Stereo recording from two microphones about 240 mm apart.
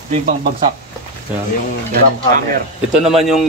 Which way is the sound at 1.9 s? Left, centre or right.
Right.